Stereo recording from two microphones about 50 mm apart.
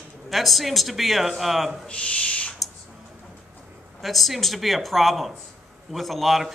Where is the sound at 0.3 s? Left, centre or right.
Centre.